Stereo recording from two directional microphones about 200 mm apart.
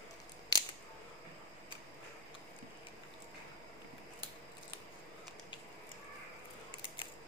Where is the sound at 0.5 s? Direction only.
20° left (ahead or behind).